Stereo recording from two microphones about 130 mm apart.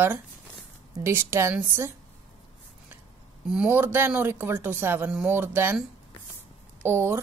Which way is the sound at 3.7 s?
15° right (ahead or behind).